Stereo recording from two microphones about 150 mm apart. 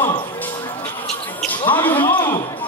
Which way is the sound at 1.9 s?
35° left (ahead or behind).